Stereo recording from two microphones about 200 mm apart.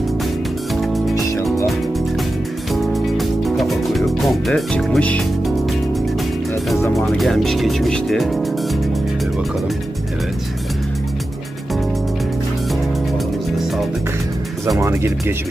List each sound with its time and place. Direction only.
1.1 s music: 15° left (ahead or behind)
2.7 s music: centre (ahead or behind)
6.8 s speech: 5° left (ahead or behind)
14.8 s speech: 15° right (ahead or behind)